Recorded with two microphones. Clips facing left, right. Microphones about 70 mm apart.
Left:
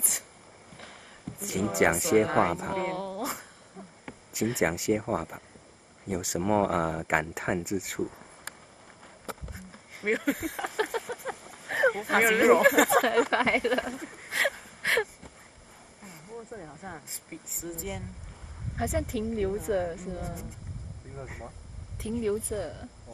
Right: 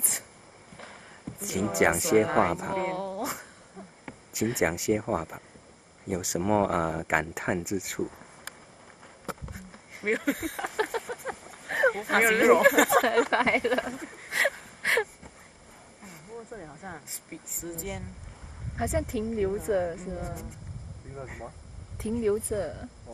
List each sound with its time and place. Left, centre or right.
1.4 s a woman's voice: centre
9.5 s a sound: centre
16.0 s speech: centre
22.0 s speech: right